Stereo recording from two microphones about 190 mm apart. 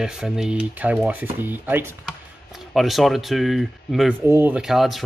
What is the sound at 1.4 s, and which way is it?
Chopping, 10° right (ahead or behind).